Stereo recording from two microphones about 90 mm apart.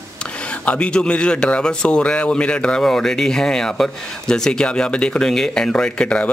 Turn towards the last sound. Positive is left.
turn(degrees=10)  # may be behind; listen again after turning